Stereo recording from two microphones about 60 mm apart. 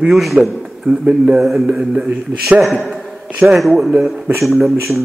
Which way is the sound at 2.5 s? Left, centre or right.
Centre.